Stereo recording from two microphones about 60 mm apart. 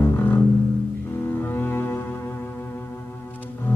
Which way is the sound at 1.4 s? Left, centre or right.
Left.